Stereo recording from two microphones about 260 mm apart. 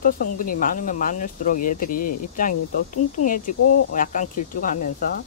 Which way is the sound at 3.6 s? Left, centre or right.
Left.